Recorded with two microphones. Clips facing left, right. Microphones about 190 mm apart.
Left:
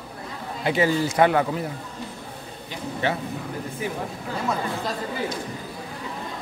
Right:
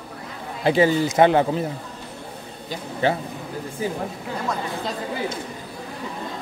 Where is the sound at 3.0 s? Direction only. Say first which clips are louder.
Right 4 dB; 30° right (ahead or behind).